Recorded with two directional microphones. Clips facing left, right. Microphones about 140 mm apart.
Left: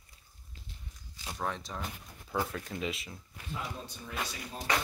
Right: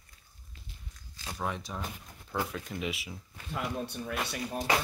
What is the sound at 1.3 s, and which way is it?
Speech, 5° right (ahead or behind).